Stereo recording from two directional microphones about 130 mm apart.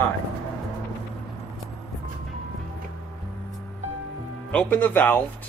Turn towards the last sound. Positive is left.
turn(degrees=15)  # may be behind; listen again after turning